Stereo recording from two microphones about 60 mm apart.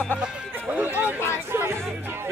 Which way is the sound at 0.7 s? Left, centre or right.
Right.